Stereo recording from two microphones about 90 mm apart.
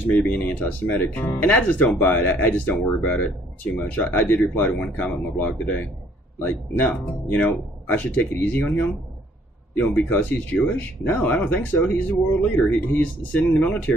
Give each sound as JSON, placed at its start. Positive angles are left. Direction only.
{"t": 0.2, "sound": "speech", "side_deg": 10}
{"t": 9.8, "sound": "speech", "side_deg": 15}